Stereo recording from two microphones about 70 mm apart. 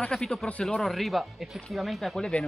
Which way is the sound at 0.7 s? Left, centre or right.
Centre.